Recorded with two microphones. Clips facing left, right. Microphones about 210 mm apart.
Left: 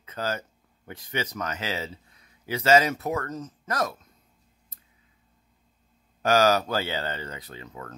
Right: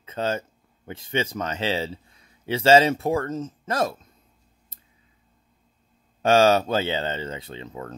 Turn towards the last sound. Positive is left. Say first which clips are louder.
# right 5 dB
turn(degrees=-25)  # may be behind; listen again after turning